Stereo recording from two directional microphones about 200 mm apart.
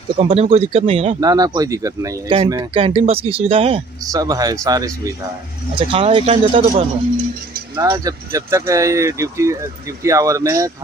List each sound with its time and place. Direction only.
0.2 s speech: 30° right (ahead or behind)
2.3 s speech: 30° right (ahead or behind)